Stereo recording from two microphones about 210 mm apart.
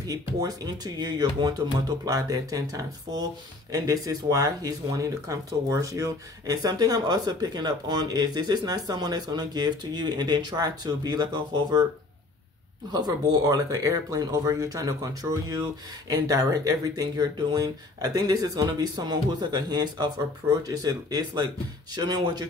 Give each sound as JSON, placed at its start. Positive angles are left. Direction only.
{"t": 0.0, "sound": "speech", "side_deg": -20}
{"t": 12.9, "sound": "speech", "side_deg": -20}